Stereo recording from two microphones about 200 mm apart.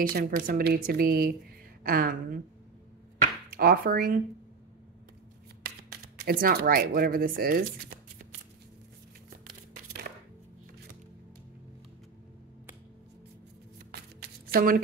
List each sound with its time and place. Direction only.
0.0 s speech: 45° right (ahead or behind)
3.4 s speech: 45° right (ahead or behind)
5.6 s shuffling cards: 50° right (ahead or behind)
6.4 s speech: 45° right (ahead or behind)
14.5 s speech: 50° right (ahead or behind)